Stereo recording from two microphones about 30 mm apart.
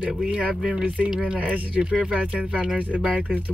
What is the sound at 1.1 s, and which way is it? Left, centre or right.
Speech, right.